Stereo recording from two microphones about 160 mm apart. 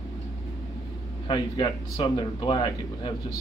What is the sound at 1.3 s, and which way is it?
A man's voice, 30° left (ahead or behind).